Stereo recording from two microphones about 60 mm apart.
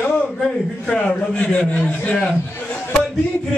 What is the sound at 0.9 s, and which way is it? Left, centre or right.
A man's voice, left.